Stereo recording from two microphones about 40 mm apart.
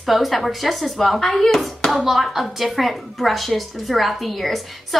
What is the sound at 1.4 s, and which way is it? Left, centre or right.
Speech, centre.